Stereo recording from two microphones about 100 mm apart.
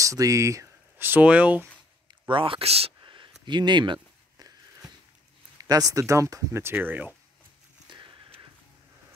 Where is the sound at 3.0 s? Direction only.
55° right (ahead or behind).